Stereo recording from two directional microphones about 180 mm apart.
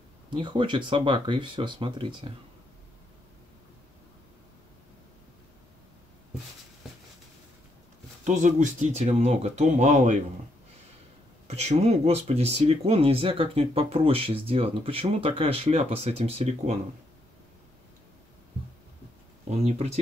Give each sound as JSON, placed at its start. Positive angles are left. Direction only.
{"t": 0.3, "sound": "speech", "side_deg": -25}
{"t": 8.2, "sound": "speech", "side_deg": -45}
{"t": 11.4, "sound": "speech", "side_deg": -35}
{"t": 19.5, "sound": "speech", "side_deg": -40}